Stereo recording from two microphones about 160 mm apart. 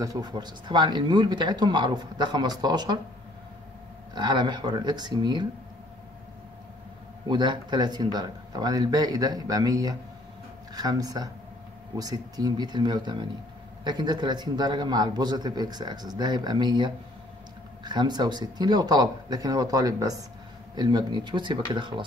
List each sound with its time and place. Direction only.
0.0 s a man's voice: 25° right (ahead or behind)
4.1 s a man's voice: 25° right (ahead or behind)
7.2 s a man's voice: 25° right (ahead or behind)